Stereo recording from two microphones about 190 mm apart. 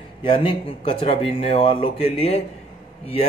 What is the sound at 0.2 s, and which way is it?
A man's voice, 25° left (ahead or behind).